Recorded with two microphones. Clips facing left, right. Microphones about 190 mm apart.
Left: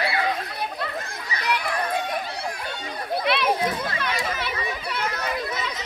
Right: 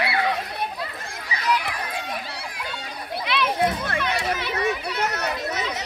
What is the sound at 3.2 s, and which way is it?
Children playing, 55° left (ahead or behind).